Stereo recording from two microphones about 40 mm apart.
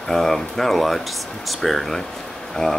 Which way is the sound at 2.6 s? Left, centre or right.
Centre.